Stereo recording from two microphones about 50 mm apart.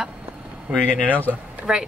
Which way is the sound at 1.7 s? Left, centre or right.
Centre.